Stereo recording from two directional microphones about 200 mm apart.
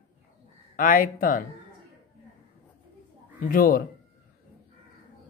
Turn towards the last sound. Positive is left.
turn(degrees=45)  # may be behind; listen again after turning